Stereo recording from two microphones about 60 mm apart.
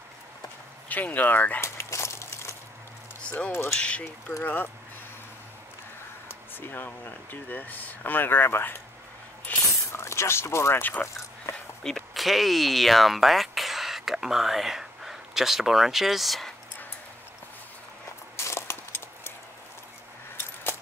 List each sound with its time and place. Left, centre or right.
0.8 s speech: left
1.6 s dog: left
3.2 s speech: left
4.4 s speech: left
6.2 s speech: left
9.5 s a sound: left
9.9 s speech: left
10.8 s speech: left
12.1 s speech: centre
18.3 s a sound: left